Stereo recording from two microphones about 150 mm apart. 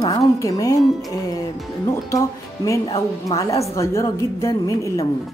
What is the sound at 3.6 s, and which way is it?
Speech, 20° left (ahead or behind).